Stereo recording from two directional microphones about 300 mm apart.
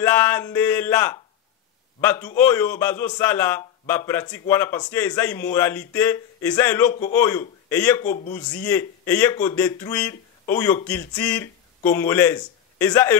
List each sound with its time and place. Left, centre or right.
0.0 s a man's voice: centre